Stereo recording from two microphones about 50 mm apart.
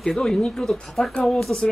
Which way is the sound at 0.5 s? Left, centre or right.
Centre.